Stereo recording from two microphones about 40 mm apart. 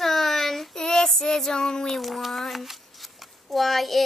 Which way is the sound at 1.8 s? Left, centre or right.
Centre.